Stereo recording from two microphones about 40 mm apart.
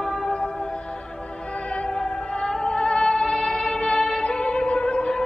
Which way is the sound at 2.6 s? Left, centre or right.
Left.